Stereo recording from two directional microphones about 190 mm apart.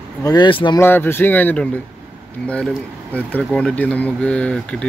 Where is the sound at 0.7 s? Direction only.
10° left (ahead or behind).